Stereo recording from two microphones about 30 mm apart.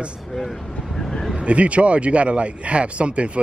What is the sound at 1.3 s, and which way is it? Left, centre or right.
Speech, right.